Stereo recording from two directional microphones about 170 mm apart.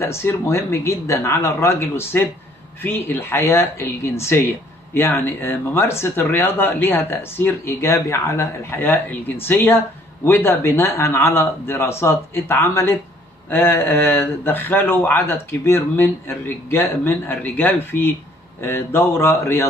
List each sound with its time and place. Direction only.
0.0 s speech: 15° left (ahead or behind)